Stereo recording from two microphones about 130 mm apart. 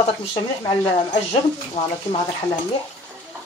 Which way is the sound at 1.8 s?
55° left (ahead or behind).